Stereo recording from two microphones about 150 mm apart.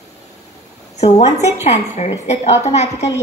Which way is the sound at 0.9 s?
45° left (ahead or behind).